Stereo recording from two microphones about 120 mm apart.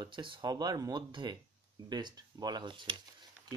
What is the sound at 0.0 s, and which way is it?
Speech, 40° right (ahead or behind).